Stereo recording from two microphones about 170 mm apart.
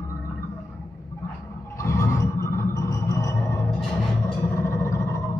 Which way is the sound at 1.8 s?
15° left (ahead or behind).